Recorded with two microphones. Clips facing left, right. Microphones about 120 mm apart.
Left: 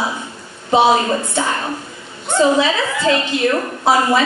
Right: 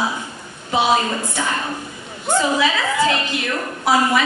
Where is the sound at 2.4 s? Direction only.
25° left (ahead or behind).